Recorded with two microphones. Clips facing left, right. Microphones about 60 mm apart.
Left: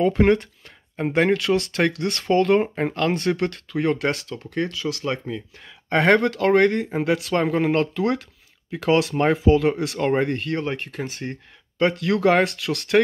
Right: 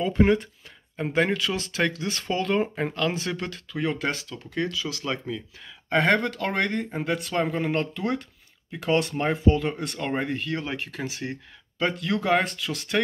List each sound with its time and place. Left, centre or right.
0.0 s speech: left
1.1 s speech: left
2.6 s speech: left
2.9 s speech: left
4.6 s speech: left
5.9 s speech: left
9.1 s speech: left
11.2 s speech: centre
11.8 s speech: left